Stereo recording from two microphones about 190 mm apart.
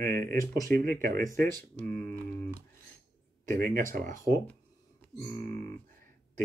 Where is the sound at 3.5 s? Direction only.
45° right (ahead or behind).